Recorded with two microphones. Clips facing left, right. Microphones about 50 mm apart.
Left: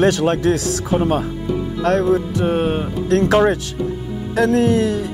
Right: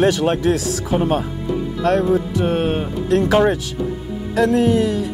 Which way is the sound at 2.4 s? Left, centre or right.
Right.